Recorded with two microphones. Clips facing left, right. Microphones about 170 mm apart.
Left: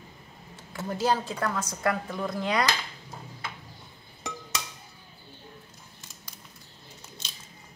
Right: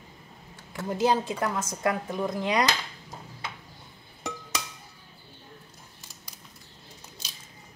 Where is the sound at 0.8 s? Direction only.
20° right (ahead or behind).